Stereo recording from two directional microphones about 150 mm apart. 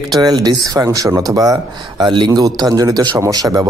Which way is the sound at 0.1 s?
25° right (ahead or behind).